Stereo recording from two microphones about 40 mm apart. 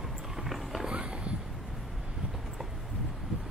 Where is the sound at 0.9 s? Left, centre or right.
Right.